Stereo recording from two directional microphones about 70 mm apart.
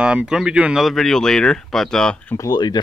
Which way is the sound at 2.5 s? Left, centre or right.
Left.